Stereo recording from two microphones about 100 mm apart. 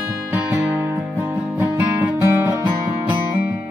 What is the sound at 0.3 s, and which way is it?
Music, 20° right (ahead or behind).